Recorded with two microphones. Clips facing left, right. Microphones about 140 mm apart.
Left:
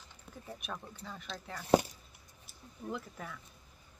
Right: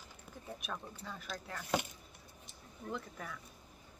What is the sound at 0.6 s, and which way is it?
Speech, centre (ahead or behind).